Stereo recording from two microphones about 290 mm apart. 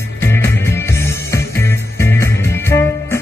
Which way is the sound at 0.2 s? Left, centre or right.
Centre.